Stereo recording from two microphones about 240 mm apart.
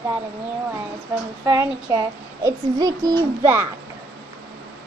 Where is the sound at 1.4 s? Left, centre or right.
Centre.